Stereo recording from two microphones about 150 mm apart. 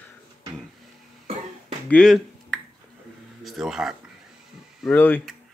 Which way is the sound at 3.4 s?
Centre (ahead or behind).